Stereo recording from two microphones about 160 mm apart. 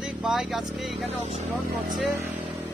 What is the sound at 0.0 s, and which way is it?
Speech, centre (ahead or behind).